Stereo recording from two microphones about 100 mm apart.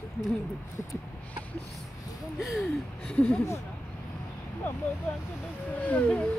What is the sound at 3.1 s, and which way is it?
Speech, 10° left (ahead or behind).